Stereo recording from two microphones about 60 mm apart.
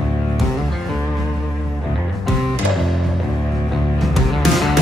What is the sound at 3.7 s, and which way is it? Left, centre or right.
Music, centre.